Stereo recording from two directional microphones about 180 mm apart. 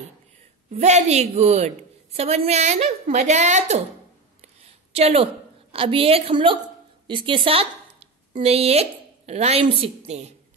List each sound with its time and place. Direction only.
0.7 s a woman's voice: 40° right (ahead or behind)
4.9 s a woman's voice: 35° right (ahead or behind)